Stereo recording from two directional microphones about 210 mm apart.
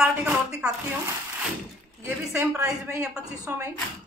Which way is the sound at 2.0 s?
15° right (ahead or behind).